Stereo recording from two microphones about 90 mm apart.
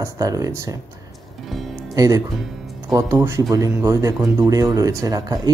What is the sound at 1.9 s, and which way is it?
Speech, 40° right (ahead or behind).